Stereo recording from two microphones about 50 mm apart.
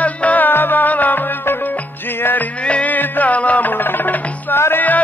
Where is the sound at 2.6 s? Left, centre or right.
Left.